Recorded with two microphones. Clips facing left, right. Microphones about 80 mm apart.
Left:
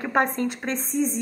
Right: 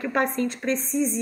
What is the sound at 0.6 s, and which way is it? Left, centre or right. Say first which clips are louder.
Speech: right 2 dB; left.